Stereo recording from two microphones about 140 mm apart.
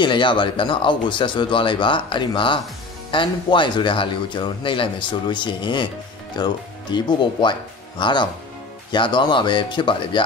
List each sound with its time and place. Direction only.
0.0 s speech: 35° left (ahead or behind)